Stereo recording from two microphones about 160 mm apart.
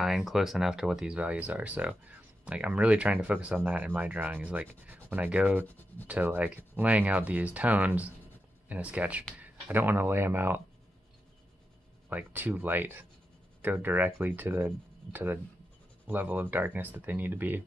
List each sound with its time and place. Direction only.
0.0 s speech: centre (ahead or behind)
5.7 s speech: 10° left (ahead or behind)
6.0 s speech: 10° right (ahead or behind)
12.1 s speech: 10° right (ahead or behind)
16.1 s speech: 10° right (ahead or behind)